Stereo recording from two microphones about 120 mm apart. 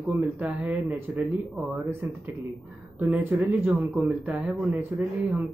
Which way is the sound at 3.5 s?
15° right (ahead or behind).